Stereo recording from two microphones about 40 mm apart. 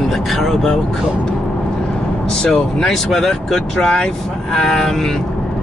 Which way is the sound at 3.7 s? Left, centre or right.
Centre.